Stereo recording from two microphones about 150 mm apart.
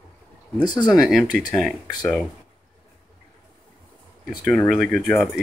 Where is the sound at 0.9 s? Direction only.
Centre (ahead or behind).